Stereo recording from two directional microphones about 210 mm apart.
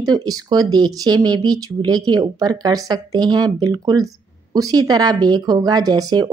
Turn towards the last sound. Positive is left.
turn(degrees=-20)  # may be behind; listen again after turning